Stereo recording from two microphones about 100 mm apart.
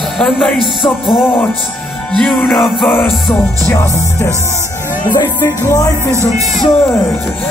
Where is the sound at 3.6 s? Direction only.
25° left (ahead or behind).